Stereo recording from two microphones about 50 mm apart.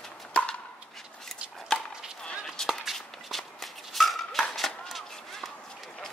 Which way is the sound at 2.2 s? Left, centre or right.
Centre.